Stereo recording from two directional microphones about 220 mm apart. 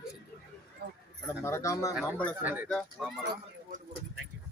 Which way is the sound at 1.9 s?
Centre (ahead or behind).